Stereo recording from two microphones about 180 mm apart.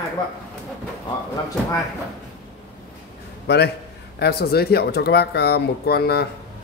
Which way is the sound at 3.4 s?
70° left (ahead or behind).